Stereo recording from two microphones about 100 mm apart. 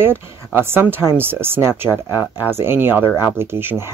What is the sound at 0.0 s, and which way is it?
Speech, 20° right (ahead or behind).